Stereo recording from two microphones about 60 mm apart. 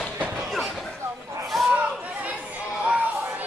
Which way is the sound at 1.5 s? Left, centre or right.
Centre.